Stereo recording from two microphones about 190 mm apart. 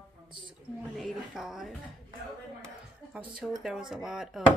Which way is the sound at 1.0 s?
Centre (ahead or behind).